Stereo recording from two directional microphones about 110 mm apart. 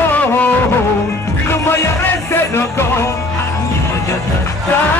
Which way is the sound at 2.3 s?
20° left (ahead or behind).